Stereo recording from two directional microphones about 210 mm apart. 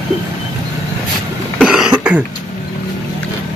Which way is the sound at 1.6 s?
Centre (ahead or behind).